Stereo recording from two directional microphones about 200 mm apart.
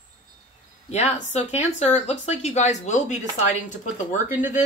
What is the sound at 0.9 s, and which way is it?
Speech, 35° left (ahead or behind).